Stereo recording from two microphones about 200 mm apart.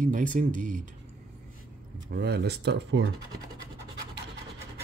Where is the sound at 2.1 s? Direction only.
55° right (ahead or behind).